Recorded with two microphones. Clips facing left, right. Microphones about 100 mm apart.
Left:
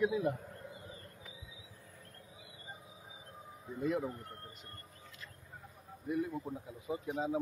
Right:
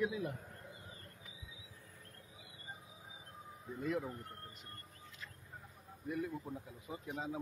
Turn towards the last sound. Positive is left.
turn(degrees=15)  # may be behind; listen again after turning